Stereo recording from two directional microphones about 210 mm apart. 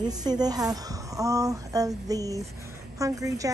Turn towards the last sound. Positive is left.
turn(degrees=-15)  # may be behind; listen again after turning